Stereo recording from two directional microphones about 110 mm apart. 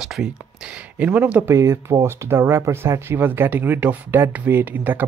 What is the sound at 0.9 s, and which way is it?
Speech, 15° right (ahead or behind).